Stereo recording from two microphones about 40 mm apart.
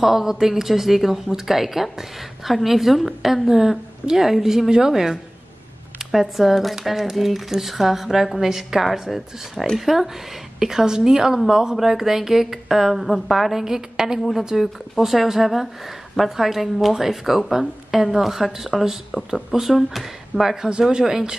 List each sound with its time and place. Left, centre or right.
0.0 s a woman's voice: centre